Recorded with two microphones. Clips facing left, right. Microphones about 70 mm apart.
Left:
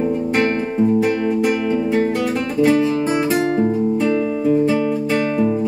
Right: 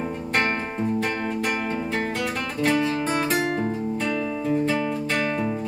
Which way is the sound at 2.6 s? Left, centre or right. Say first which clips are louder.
Left 7 dB; centre.